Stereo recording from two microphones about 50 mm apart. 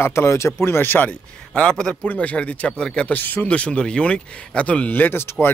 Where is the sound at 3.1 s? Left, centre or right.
Left.